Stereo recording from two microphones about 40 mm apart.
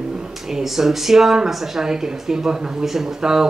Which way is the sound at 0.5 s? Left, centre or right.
Centre.